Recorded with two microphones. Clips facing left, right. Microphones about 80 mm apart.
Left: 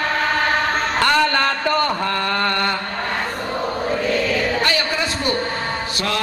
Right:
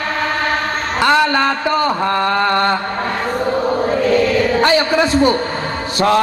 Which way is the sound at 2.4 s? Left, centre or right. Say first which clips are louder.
Right 6 dB; right.